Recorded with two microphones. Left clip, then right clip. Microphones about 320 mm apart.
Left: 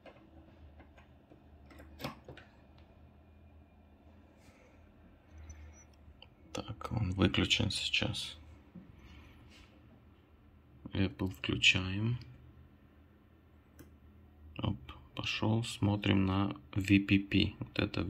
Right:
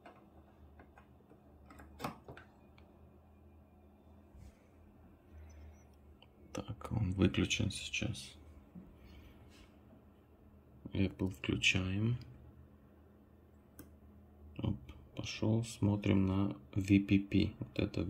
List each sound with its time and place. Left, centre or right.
6.1 s clicking: centre
10.9 s speech: centre
14.5 s speech: centre